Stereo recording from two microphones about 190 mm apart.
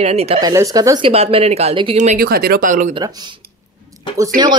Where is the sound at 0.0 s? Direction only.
35° right (ahead or behind).